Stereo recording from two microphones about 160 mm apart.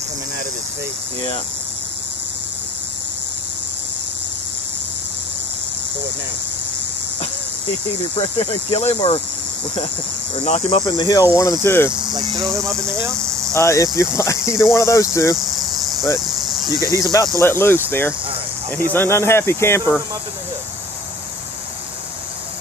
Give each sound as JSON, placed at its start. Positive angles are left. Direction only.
{"t": 8.2, "sound": "speech", "side_deg": 35}
{"t": 10.3, "sound": "speech", "side_deg": 40}
{"t": 10.9, "sound": "speech", "side_deg": 25}
{"t": 11.6, "sound": "speech", "side_deg": 15}
{"t": 12.1, "sound": "speech", "side_deg": -20}
{"t": 13.6, "sound": "speech", "side_deg": 20}
{"t": 15.3, "sound": "cricket", "side_deg": 0}
{"t": 16.6, "sound": "speech", "side_deg": -20}
{"t": 16.9, "sound": "speech", "side_deg": 20}